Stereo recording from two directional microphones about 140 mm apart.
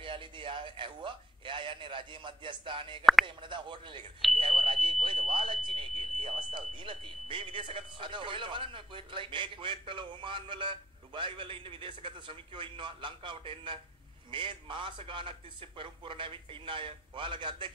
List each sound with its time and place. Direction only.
0.0 s speech: 35° right (ahead or behind)